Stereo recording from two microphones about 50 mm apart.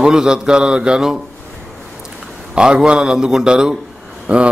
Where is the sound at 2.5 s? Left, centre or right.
Centre.